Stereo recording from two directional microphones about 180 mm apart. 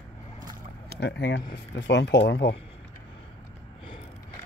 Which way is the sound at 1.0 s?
75° left (ahead or behind).